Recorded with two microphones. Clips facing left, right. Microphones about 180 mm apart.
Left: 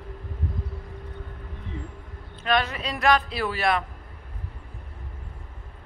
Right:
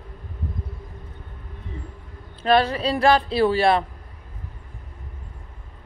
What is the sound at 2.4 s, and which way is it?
Speech, 30° right (ahead or behind).